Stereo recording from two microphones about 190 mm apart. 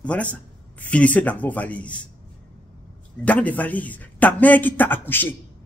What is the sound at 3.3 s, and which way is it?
A man's voice, 10° left (ahead or behind).